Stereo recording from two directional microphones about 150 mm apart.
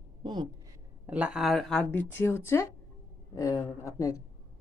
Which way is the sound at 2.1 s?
15° left (ahead or behind).